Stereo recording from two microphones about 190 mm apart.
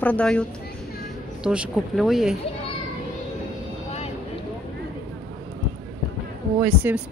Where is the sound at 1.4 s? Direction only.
5° right (ahead or behind).